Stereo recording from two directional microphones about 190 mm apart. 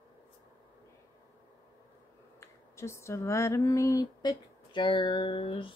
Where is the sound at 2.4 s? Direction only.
15° left (ahead or behind).